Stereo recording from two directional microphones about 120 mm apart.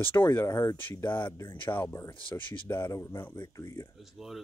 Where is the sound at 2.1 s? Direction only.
45° left (ahead or behind).